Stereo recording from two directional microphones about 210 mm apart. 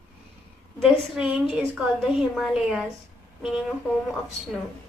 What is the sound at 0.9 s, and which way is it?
A woman's voice, 5° right (ahead or behind).